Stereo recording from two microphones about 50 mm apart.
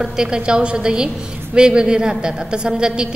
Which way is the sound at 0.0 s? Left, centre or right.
Centre.